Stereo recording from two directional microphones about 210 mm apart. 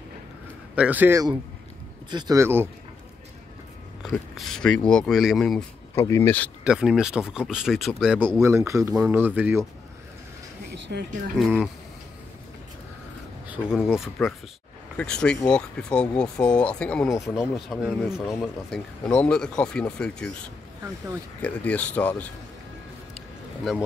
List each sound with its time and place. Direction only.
0.7 s speech: 5° right (ahead or behind)
4.0 s speech: centre (ahead or behind)
6.6 s speech: 5° right (ahead or behind)
10.7 s a sound: 50° right (ahead or behind)
11.3 s speech: centre (ahead or behind)
13.7 s speech: centre (ahead or behind)
23.1 s a sound: centre (ahead or behind)